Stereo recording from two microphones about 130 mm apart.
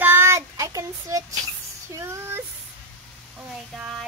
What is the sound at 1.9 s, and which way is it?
Speech, 20° right (ahead or behind).